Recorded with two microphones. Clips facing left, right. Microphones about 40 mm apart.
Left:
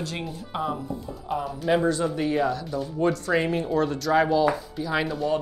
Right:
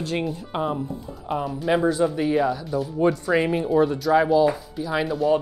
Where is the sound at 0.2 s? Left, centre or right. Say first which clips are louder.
Right 4 dB; centre.